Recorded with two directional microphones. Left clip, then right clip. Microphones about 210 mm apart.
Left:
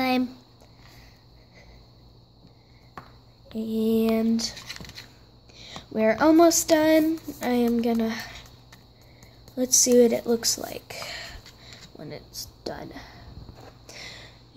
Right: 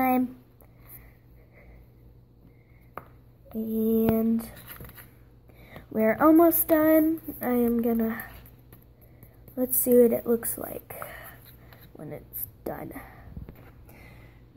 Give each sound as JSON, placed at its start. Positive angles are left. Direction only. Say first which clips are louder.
{"t": 3.5, "sound": "lullaby", "louder": "left 1 dB", "side_deg": 5}
{"t": 4.1, "sound": "speech", "louder": "left 2 dB", "side_deg": 10}
{"t": 5.6, "sound": "a sound", "louder": "left 7 dB", "side_deg": 60}
{"t": 5.9, "sound": "speech", "louder": "left 1 dB", "side_deg": 5}
{"t": 9.6, "sound": "speech", "louder": "left 2 dB", "side_deg": 10}
{"t": 12.7, "sound": "lullaby", "louder": "even", "side_deg": 0}